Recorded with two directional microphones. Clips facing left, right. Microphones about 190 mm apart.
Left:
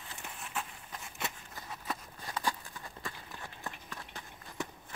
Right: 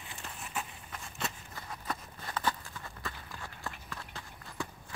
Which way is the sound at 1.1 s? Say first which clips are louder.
Right 2 dB; 15° left (ahead or behind).